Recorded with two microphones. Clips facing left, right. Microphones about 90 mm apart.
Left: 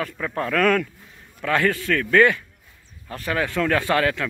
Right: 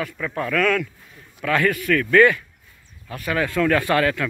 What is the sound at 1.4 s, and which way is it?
A man's voice, 25° left (ahead or behind).